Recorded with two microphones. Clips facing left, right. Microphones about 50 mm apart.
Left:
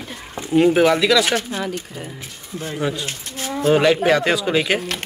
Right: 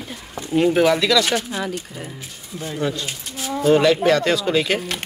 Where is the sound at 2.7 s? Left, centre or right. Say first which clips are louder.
Even; centre.